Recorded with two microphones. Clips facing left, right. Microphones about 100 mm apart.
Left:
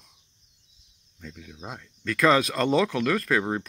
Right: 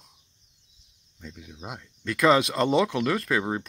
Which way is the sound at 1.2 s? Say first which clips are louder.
Even; 15° right (ahead or behind).